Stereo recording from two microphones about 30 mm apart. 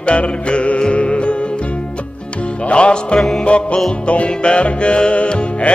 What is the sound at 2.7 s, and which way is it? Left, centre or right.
Music, left.